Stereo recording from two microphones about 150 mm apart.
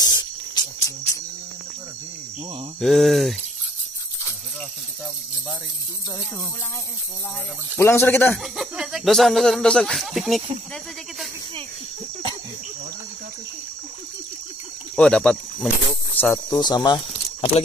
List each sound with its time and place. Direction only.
0.0 s a sound: 25° left (ahead or behind)
2.8 s speech: centre (ahead or behind)
7.7 s speech: 15° left (ahead or behind)
8.5 s speech: centre (ahead or behind)
15.0 s speech: 5° left (ahead or behind)
16.2 s speech: 15° left (ahead or behind)
16.5 s speech: 30° left (ahead or behind)